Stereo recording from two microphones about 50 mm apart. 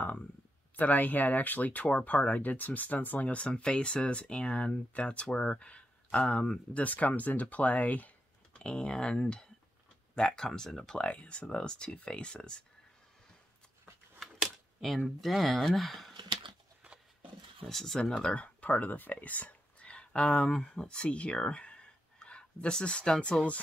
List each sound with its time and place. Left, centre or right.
0.7 s speech: left
8.5 s speech: centre
11.0 s speech: left
14.8 s speech: centre
17.6 s speech: centre
18.1 s speech: left